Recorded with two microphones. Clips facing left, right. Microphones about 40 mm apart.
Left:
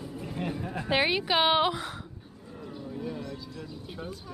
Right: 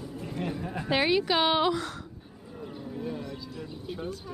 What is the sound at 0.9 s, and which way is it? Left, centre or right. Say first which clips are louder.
A woman's voice: right 1 dB; centre.